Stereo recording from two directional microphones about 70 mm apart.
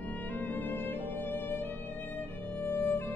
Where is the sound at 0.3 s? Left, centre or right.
Left.